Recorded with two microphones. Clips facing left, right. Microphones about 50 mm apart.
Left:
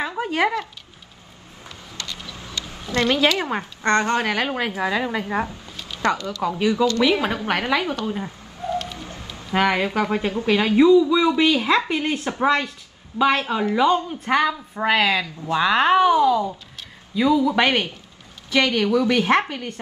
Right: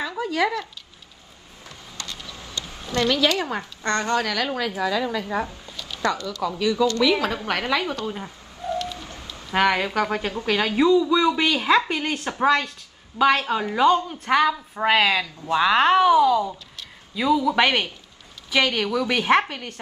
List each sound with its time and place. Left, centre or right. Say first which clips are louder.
0.2 s speech: left 1 dB; left
2.9 s a woman's voice: left 2 dB; left
6.4 s a woman's voice: left 1 dB; left
8.7 s rain: left 1 dB; left
9.6 s a woman's voice: even; centre
17.5 s a woman's voice: left 1 dB; centre